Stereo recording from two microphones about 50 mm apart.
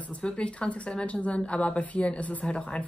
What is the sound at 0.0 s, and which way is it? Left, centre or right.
Speech, left.